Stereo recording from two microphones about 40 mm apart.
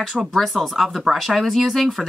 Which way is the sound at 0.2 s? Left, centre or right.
Right.